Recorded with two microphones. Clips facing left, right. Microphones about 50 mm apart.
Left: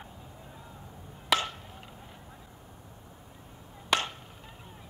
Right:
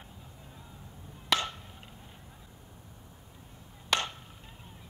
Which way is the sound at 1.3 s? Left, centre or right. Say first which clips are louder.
Left 2 dB; centre.